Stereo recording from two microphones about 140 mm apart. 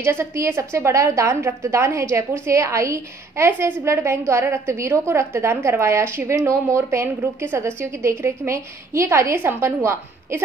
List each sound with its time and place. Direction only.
0.0 s a woman's voice: 20° right (ahead or behind)